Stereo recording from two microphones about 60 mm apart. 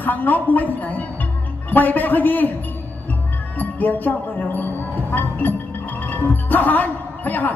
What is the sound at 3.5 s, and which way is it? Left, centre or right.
Speech, left.